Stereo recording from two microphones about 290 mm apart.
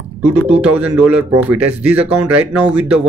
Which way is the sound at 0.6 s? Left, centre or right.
Centre.